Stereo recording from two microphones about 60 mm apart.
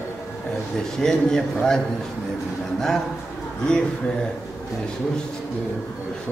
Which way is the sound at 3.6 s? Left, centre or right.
Centre.